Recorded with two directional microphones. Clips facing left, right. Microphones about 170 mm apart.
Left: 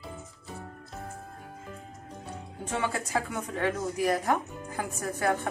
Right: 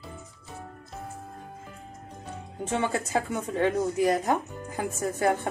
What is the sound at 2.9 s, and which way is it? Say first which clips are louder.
Speech: right 3 dB; 25° right (ahead or behind).